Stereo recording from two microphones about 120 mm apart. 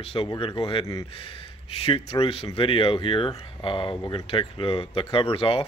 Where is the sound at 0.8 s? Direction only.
30° left (ahead or behind).